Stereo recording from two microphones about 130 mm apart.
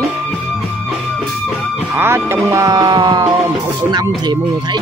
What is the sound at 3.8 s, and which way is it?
Speech, 35° right (ahead or behind).